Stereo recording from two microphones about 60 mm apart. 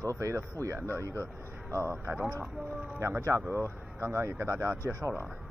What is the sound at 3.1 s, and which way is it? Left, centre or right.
Speech, right.